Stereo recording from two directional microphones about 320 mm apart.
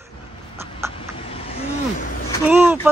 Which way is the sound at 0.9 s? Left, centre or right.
Centre.